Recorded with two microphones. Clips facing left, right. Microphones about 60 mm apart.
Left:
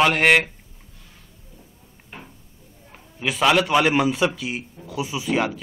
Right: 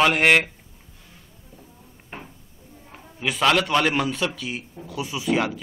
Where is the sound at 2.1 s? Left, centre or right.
Right.